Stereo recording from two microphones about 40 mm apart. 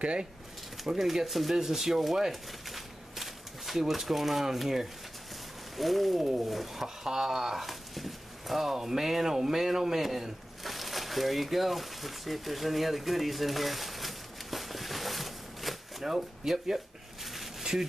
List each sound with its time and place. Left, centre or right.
0.0 s speech: right
0.8 s speech: centre